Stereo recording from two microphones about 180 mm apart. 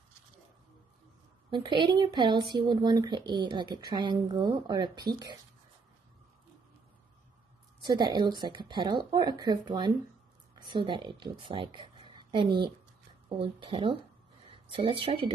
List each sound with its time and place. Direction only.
1.5 s speech: 25° right (ahead or behind)
7.8 s speech: 25° right (ahead or behind)